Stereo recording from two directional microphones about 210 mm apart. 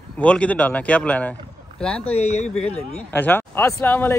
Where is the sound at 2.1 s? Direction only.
30° left (ahead or behind).